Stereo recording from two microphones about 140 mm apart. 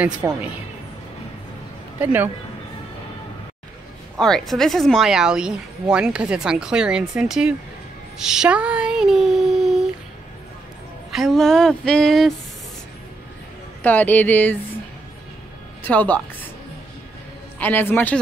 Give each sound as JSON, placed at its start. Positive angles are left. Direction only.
{"t": 0.2, "sound": "speech", "side_deg": -20}
{"t": 2.0, "sound": "a man's voice", "side_deg": -15}
{"t": 4.2, "sound": "a woman's voice", "side_deg": 0}
{"t": 8.2, "sound": "a sound", "side_deg": -5}
{"t": 11.1, "sound": "a woman's voice", "side_deg": 0}
{"t": 13.8, "sound": "speech", "side_deg": 10}
{"t": 15.8, "sound": "speech", "side_deg": 10}
{"t": 17.6, "sound": "speech", "side_deg": 15}